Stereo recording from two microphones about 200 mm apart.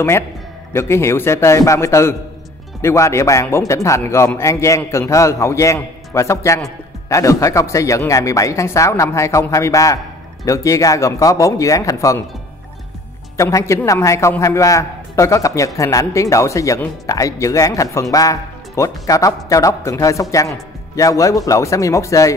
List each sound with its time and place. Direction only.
0.7 s a man's voice: 15° left (ahead or behind)
13.4 s a man's voice: 15° left (ahead or behind)